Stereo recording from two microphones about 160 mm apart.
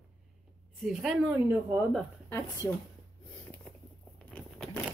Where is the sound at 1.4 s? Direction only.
20° right (ahead or behind).